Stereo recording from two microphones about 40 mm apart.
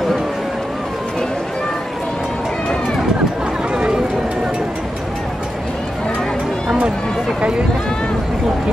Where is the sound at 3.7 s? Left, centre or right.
Right.